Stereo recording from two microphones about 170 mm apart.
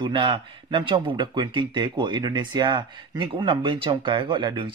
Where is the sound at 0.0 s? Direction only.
25° right (ahead or behind).